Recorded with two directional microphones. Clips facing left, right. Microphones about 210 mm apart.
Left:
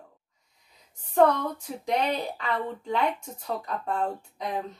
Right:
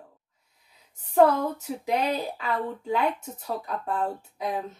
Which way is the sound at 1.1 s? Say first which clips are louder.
Right 2 dB; 5° right (ahead or behind).